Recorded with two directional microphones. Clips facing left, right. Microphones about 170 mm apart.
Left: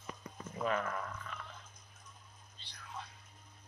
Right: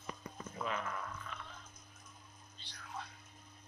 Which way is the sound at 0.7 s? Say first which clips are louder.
Left 6 dB; 50° left (ahead or behind).